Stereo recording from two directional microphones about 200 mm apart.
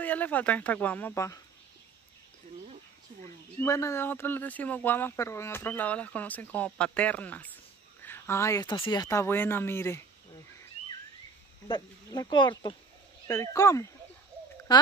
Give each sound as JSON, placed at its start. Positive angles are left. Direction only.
{"t": 0.0, "sound": "speech", "side_deg": 10}
{"t": 3.6, "sound": "speech", "side_deg": 15}
{"t": 11.6, "sound": "speech", "side_deg": 20}